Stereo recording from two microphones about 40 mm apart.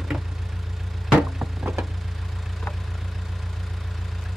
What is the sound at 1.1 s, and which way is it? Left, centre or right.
Vehicle, centre.